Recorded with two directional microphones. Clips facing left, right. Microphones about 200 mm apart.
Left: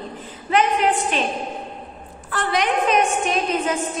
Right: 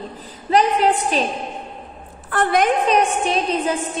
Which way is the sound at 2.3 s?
50° right (ahead or behind).